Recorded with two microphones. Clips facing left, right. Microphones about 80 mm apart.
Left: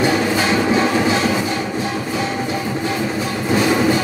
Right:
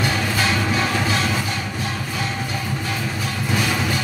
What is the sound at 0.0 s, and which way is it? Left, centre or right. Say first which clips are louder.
Music: left 5 dB; left.